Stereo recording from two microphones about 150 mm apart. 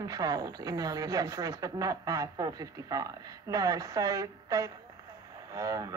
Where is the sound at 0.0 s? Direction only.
25° right (ahead or behind).